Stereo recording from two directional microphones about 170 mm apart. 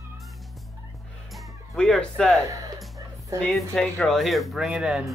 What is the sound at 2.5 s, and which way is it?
Music, 20° right (ahead or behind).